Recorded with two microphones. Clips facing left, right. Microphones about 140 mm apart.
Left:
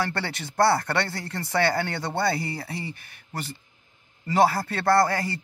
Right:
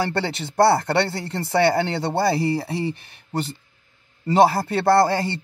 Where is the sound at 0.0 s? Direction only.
25° right (ahead or behind).